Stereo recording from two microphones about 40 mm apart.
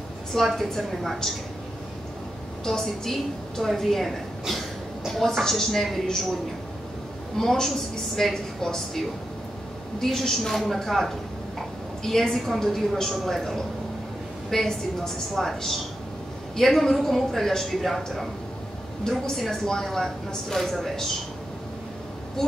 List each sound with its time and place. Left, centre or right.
0.3 s a woman's voice: centre
2.6 s a woman's voice: centre
5.4 s a woman's voice: centre
7.3 s a woman's voice: centre